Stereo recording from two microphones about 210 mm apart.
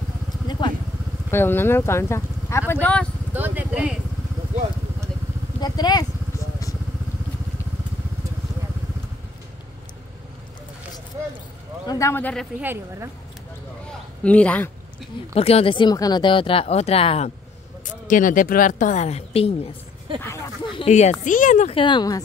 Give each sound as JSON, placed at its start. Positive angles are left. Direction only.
{"t": 0.5, "sound": "vehicle", "side_deg": 20}
{"t": 1.3, "sound": "a man's voice", "side_deg": 10}
{"t": 3.3, "sound": "speech", "side_deg": -10}
{"t": 5.6, "sound": "vehicle", "side_deg": 20}
{"t": 11.8, "sound": "a man's voice", "side_deg": 15}
{"t": 12.5, "sound": "speech", "side_deg": -10}
{"t": 13.8, "sound": "a sound", "side_deg": 5}
{"t": 15.3, "sound": "speech", "side_deg": 30}
{"t": 17.8, "sound": "a woman's voice", "side_deg": 40}
{"t": 20.2, "sound": "speech", "side_deg": 15}
{"t": 20.7, "sound": "a sound", "side_deg": 30}
{"t": 21.2, "sound": "speech", "side_deg": 40}